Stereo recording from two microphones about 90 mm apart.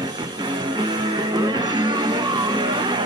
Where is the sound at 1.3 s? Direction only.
55° right (ahead or behind).